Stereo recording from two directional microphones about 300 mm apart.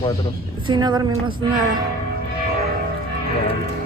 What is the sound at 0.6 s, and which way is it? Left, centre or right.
Speech, centre.